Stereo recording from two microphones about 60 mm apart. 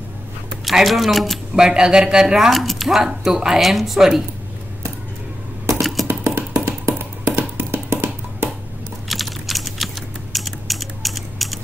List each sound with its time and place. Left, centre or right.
0.7 s speech: centre
1.5 s speech: centre
5.7 s a sound: centre
6.0 s music: right
9.1 s typing: centre